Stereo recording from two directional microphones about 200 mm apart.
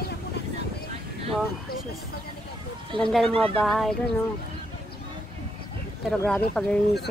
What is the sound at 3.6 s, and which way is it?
Speech, centre (ahead or behind).